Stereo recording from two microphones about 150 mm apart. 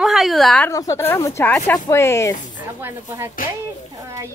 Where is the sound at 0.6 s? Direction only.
20° left (ahead or behind).